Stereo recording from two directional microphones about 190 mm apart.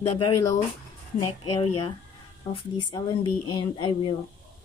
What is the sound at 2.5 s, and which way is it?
Speech, 25° left (ahead or behind).